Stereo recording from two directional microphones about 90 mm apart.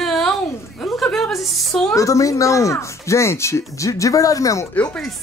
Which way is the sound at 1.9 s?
35° left (ahead or behind).